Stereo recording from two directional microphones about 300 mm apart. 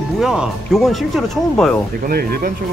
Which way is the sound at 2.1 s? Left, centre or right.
Right.